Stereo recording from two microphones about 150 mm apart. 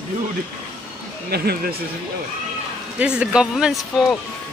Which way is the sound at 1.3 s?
90° right.